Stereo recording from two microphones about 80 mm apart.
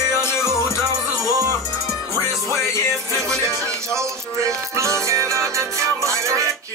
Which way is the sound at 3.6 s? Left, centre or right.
Right.